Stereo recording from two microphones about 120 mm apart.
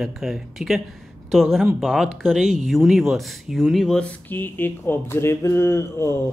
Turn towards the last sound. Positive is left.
turn(degrees=20)  # may be behind; listen again after turning